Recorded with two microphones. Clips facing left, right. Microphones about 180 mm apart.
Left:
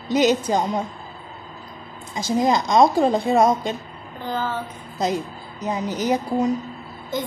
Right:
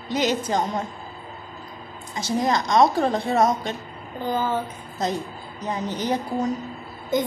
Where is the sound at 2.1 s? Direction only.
15° left (ahead or behind).